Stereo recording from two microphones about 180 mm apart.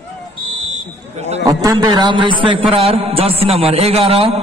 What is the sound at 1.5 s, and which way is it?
A man's voice, 20° right (ahead or behind).